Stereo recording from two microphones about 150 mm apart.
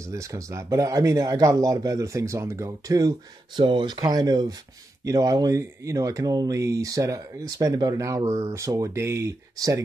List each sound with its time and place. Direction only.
0.0 s speech: 20° right (ahead or behind)